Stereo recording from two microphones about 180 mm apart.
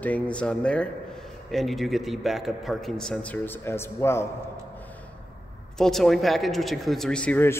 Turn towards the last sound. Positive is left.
turn(degrees=10)  # may be behind; listen again after turning